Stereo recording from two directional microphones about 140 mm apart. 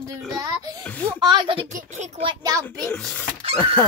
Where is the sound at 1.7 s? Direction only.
60° right (ahead or behind).